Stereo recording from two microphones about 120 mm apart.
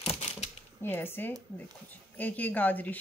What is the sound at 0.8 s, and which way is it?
Speech, 20° left (ahead or behind).